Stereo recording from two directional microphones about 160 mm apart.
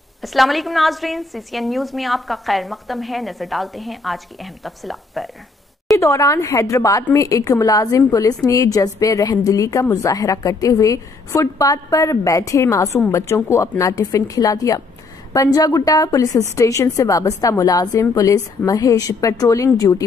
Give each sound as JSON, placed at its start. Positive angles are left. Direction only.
{"t": 0.2, "sound": "a woman's voice", "side_deg": 0}
{"t": 5.9, "sound": "a woman's voice", "side_deg": 20}